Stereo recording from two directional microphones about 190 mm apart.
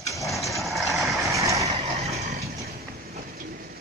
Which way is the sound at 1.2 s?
15° right (ahead or behind).